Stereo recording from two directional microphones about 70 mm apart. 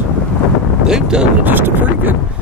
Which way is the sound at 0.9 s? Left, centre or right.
Centre.